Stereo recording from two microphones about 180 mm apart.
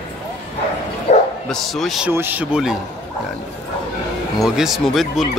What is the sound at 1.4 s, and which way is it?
Speech, centre (ahead or behind).